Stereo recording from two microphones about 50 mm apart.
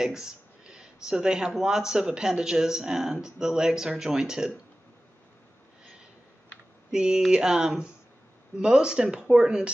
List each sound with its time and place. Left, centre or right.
0.0 s a sound: centre
1.0 s speech: centre
6.9 s speech: centre